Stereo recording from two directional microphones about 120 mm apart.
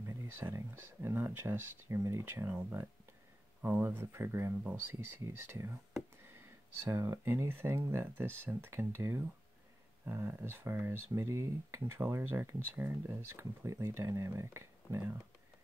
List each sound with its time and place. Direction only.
0.0 s speech: 20° right (ahead or behind)
3.6 s speech: 15° right (ahead or behind)
6.8 s speech: 20° right (ahead or behind)